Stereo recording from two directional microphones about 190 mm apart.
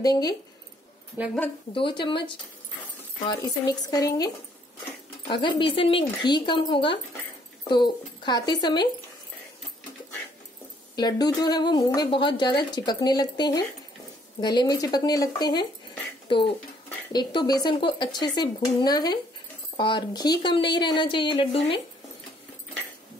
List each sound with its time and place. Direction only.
0.0 s speech: 20° left (ahead or behind)
1.2 s a woman's voice: 10° right (ahead or behind)
1.7 s speech: 25° left (ahead or behind)
3.8 s speech: 20° left (ahead or behind)
5.3 s speech: 25° left (ahead or behind)
11.0 s speech: 20° left (ahead or behind)